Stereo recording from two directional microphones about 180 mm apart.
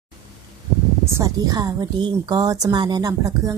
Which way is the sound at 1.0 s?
15° right (ahead or behind).